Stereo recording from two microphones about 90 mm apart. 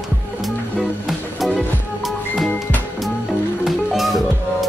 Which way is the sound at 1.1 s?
5° left (ahead or behind).